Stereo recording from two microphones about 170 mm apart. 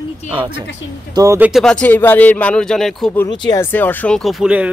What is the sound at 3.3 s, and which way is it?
Speech, 20° left (ahead or behind).